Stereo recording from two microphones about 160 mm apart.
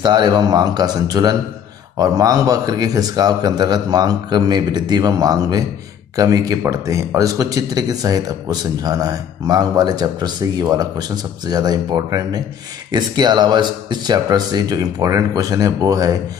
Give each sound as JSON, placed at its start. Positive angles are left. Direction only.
{"t": 0.0, "sound": "speech", "side_deg": -25}